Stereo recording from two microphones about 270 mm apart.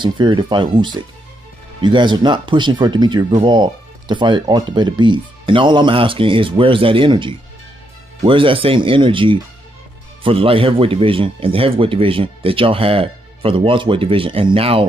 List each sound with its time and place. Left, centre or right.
0.0 s speech: centre